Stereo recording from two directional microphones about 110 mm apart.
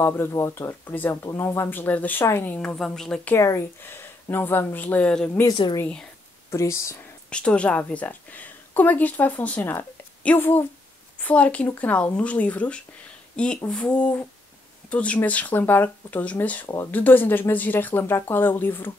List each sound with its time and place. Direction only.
0.0 s speech: 25° left (ahead or behind)
2.5 s a woman's voice: 10° left (ahead or behind)
3.3 s speech: 25° left (ahead or behind); by 5.3 s 10° left (ahead or behind)
5.5 s speech: 40° left (ahead or behind)
6.5 s speech: 25° left (ahead or behind)
7.2 s a woman's voice: 10° left (ahead or behind)